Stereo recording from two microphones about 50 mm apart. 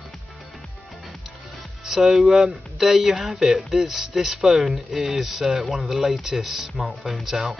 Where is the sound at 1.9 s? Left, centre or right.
Centre.